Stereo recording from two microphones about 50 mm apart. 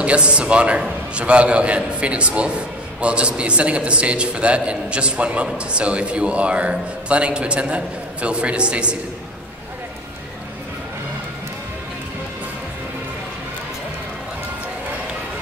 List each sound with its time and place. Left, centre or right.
0.0 s a man's voice: right